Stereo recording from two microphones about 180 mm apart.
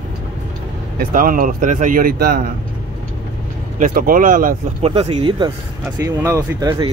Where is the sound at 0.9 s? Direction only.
50° right (ahead or behind).